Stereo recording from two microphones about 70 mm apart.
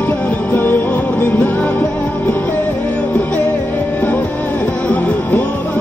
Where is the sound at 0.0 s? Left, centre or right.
Left.